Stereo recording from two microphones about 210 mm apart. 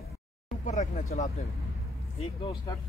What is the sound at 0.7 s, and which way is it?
Speech, 35° left (ahead or behind).